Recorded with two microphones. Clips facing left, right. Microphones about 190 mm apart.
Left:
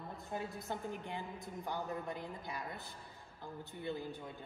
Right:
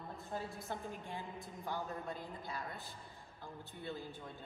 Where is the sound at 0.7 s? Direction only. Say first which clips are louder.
Left 2 dB; 20° left (ahead or behind).